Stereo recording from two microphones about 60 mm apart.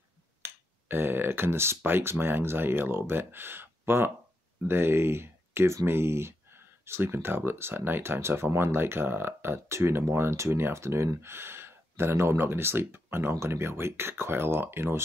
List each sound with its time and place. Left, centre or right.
0.4 s finger snapping: right
1.8 s speech: right